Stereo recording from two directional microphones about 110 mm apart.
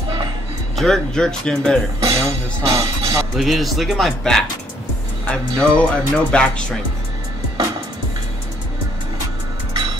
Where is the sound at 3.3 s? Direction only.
Centre (ahead or behind).